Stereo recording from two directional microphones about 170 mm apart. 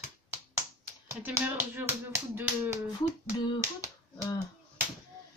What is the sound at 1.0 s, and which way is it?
Speech, 10° right (ahead or behind).